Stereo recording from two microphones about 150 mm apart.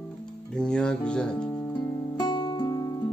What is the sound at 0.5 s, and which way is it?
Speech, 5° left (ahead or behind).